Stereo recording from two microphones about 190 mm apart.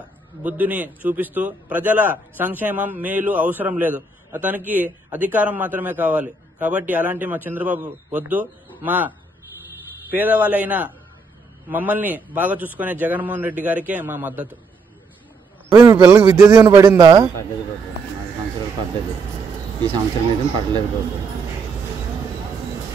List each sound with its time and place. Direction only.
0.4 s a man's voice: 10° right (ahead or behind)
10.1 s a man's voice: 10° right (ahead or behind)
15.8 s a man's voice: 15° right (ahead or behind)
19.8 s a man's voice: 25° right (ahead or behind)